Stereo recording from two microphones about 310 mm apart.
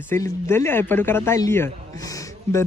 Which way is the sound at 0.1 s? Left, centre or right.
Centre.